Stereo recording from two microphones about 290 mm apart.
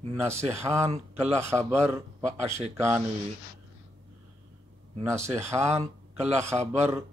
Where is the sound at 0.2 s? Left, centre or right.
Centre.